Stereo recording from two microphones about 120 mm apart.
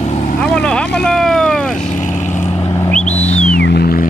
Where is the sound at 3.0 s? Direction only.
65° left (ahead or behind).